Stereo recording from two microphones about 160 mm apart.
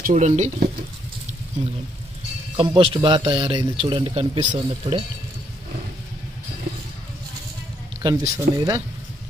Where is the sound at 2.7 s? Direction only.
35° right (ahead or behind).